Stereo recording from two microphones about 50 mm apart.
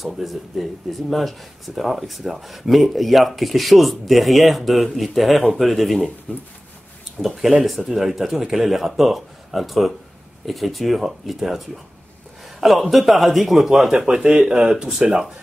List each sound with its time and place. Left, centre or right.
0.0 s speech: centre
1.8 s speech: centre
7.2 s speech: centre
12.5 s a sound: centre
12.9 s speech: centre
14.0 s speech: centre